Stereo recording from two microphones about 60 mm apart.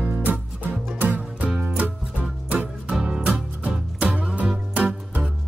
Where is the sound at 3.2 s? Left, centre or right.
Right.